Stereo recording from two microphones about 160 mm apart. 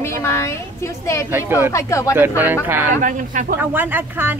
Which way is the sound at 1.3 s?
15° right (ahead or behind).